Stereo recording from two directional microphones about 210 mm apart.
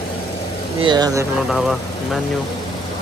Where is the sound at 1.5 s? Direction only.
Centre (ahead or behind).